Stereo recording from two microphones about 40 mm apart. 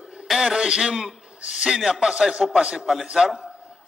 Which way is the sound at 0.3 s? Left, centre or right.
Centre.